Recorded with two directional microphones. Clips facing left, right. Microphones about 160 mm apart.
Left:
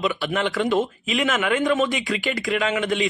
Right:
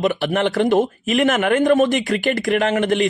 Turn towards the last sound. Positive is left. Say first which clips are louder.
# right 5 dB
turn(degrees=-55)  # may be behind; listen again after turning